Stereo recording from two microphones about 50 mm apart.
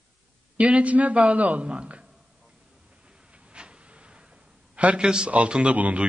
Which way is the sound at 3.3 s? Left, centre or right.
Centre.